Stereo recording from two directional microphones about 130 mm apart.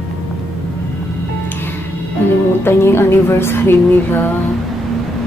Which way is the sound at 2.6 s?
20° left (ahead or behind).